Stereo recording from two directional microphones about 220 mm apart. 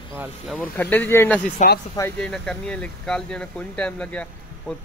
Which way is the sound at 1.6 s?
35° left (ahead or behind).